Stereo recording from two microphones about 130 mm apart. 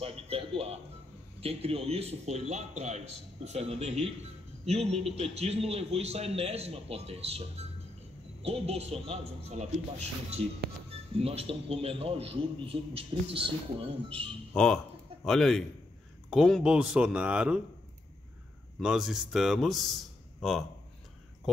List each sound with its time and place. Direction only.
0.0 s a man's voice: 50° right (ahead or behind)
11.1 s a man's voice: 50° right (ahead or behind)
14.5 s a man's voice: 5° left (ahead or behind)
18.8 s a man's voice: 5° right (ahead or behind)